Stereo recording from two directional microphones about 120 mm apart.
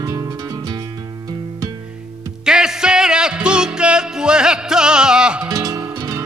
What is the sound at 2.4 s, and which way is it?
Music, 5° right (ahead or behind).